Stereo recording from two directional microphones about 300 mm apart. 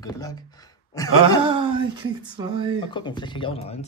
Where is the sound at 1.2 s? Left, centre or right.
Centre.